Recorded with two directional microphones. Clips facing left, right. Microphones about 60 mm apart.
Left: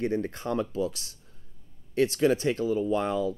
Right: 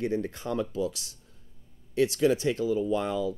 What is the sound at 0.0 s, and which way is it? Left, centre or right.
Speech, left.